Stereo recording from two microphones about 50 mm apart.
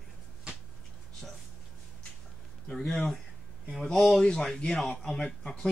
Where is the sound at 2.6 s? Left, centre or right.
Centre.